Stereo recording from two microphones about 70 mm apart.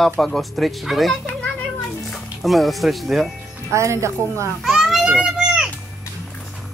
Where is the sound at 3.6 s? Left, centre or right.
Right.